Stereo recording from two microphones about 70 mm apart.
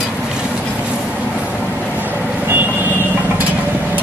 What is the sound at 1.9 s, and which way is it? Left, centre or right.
Vehicle, right.